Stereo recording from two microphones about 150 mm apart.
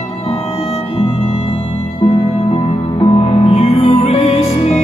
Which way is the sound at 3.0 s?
45° left (ahead or behind).